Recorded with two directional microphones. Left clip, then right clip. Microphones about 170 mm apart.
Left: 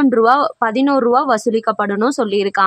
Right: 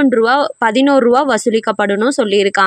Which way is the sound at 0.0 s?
Centre (ahead or behind).